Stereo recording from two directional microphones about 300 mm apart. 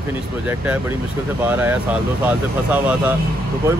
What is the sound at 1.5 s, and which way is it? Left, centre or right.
Speech, centre.